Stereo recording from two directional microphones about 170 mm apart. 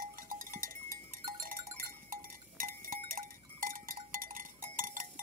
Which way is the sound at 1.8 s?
55° right (ahead or behind).